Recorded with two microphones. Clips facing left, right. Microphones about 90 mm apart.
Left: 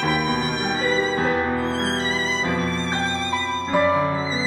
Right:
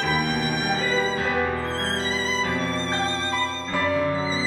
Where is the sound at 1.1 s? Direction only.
25° left (ahead or behind).